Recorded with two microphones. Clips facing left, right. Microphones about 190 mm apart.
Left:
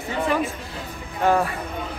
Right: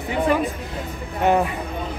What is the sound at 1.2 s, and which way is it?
Speech, 20° right (ahead or behind).